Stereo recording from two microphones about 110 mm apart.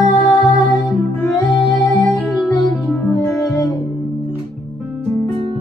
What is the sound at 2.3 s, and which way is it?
Music, 30° left (ahead or behind).